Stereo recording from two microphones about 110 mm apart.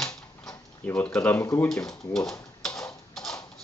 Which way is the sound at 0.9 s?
15° left (ahead or behind).